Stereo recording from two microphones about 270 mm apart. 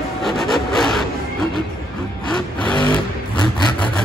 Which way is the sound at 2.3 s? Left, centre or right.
Centre.